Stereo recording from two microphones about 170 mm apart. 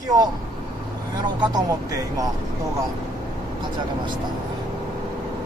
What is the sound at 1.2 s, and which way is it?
Speech, 20° right (ahead or behind).